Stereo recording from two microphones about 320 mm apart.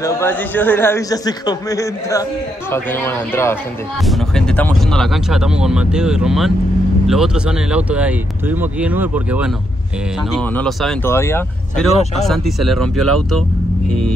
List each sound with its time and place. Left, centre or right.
0.0 s speech: centre
10.5 s speech: centre
12.9 s speech: right